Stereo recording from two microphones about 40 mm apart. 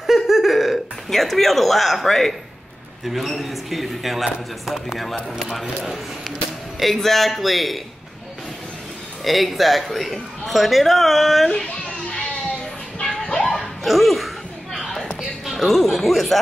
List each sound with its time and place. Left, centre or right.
0.0 s a sound: centre
3.1 s a man's voice: centre
6.8 s a man's voice: centre
9.2 s a man's voice: centre
11.6 s children playing: left
13.8 s a sound: centre
15.4 s speech: centre